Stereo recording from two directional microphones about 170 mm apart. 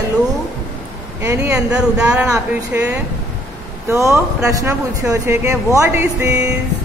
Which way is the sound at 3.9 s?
15° right (ahead or behind).